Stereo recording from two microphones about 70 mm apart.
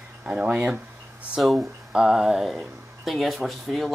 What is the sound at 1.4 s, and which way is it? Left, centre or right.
Speech, centre.